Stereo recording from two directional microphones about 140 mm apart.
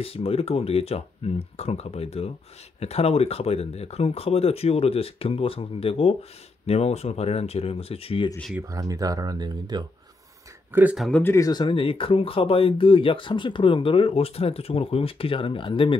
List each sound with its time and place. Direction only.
0.0 s speech: 45° left (ahead or behind)
8.6 s speech: 25° right (ahead or behind)
10.7 s speech: 10° right (ahead or behind)
11.0 s speech: 10° left (ahead or behind)
11.3 s speech: 30° left (ahead or behind)